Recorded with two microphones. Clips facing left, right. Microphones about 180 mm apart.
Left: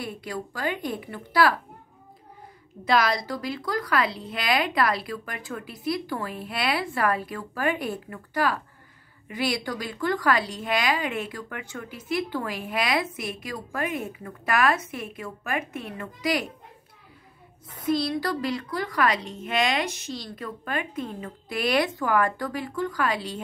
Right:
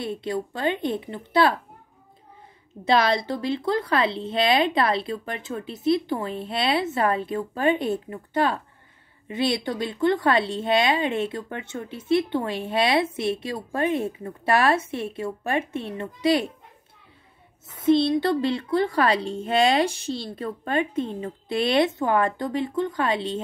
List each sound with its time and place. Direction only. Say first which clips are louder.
0.0 s speech: right 5 dB; 25° right (ahead or behind)
2.8 s speech: right 3 dB; 25° right (ahead or behind)
17.6 s speech: right 6 dB; 25° right (ahead or behind)